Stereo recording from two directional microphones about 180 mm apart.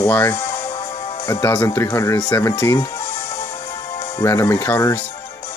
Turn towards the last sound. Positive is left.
turn(degrees=15)  # may be behind; listen again after turning